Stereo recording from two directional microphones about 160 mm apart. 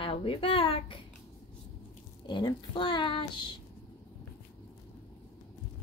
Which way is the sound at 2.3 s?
30° left (ahead or behind).